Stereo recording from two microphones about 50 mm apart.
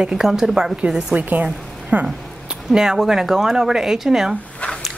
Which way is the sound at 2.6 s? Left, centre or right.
Centre.